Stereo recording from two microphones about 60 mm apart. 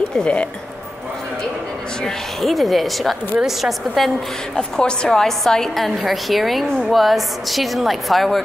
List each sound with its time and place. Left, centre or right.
0.1 s speech: centre
2.0 s a woman's voice: centre
4.6 s a woman's voice: centre